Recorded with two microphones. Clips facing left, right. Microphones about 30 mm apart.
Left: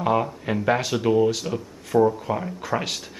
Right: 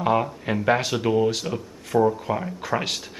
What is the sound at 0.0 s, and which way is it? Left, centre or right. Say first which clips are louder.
Speech: even; centre.